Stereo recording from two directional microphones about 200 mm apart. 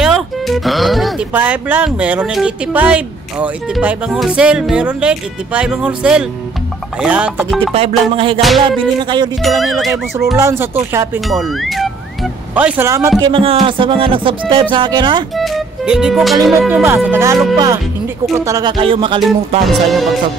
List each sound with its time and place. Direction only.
0.0 s speech: centre (ahead or behind)
7.0 s music: 5° right (ahead or behind)
7.7 s music: 30° right (ahead or behind)
8.4 s speech: centre (ahead or behind)
9.0 s music: 25° right (ahead or behind)
9.4 s speech: centre (ahead or behind)
10.3 s music: 15° right (ahead or behind)
11.1 s speech: centre (ahead or behind)
13.2 s music: 25° right (ahead or behind)
15.3 s speech: centre (ahead or behind)
16.4 s music: 5° right (ahead or behind); by 19.2 s 25° right (ahead or behind)
19.6 s speech: centre (ahead or behind)